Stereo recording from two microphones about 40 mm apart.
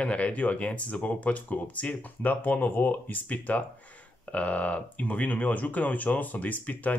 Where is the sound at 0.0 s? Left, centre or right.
Left.